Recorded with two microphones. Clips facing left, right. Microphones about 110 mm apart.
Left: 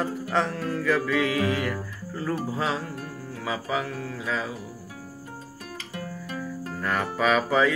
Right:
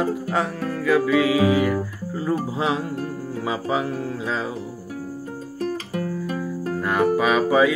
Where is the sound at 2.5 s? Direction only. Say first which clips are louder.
Right 5 dB; 20° right (ahead or behind).